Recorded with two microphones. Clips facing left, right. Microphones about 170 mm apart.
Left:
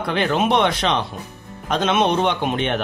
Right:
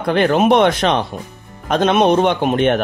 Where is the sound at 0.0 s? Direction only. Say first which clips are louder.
Right 6 dB; 50° right (ahead or behind).